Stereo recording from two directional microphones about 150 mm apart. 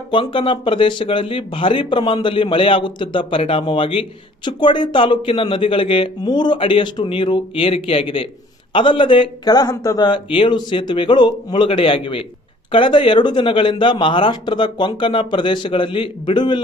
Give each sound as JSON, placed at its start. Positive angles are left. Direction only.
{"t": 0.1, "sound": "speech", "side_deg": 35}